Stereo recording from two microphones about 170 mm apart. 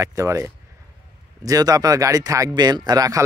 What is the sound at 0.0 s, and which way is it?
Speech, 20° right (ahead or behind).